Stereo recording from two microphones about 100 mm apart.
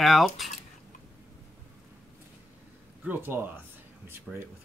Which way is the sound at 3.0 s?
20° right (ahead or behind).